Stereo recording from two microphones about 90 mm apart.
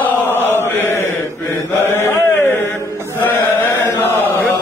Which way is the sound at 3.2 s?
25° left (ahead or behind).